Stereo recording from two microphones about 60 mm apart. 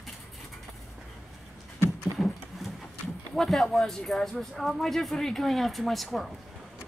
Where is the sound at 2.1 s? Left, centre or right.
Centre.